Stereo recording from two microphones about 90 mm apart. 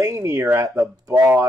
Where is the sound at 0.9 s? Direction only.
45° right (ahead or behind).